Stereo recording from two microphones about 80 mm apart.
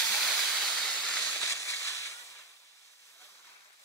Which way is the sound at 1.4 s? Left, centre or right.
Left.